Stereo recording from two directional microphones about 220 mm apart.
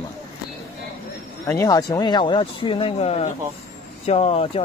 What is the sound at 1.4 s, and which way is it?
Speech, 15° left (ahead or behind).